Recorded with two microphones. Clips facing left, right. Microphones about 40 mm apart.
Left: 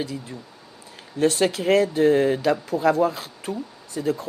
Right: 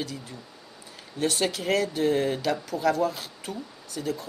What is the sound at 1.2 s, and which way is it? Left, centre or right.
Speech, left.